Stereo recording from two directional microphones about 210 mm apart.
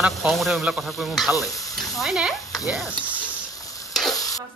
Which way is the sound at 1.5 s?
15° left (ahead or behind).